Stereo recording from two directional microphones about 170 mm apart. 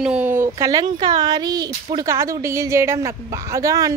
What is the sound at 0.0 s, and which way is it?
A woman's voice, 5° right (ahead or behind).